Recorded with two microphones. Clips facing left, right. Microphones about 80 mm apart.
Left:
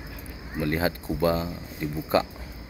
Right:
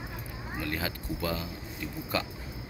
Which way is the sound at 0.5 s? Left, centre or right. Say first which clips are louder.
Left 8 dB; left.